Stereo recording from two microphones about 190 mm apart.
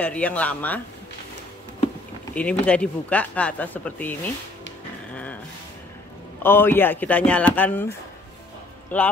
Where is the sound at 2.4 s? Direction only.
5° left (ahead or behind).